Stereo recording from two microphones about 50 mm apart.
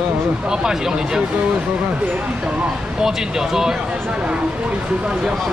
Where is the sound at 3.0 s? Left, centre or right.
Centre.